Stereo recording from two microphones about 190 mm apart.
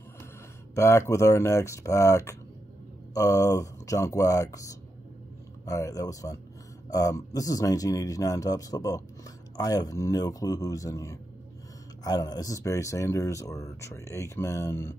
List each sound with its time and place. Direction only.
0.7 s speech: 15° left (ahead or behind)